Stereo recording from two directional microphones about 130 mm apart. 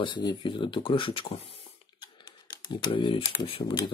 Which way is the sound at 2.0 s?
35° left (ahead or behind).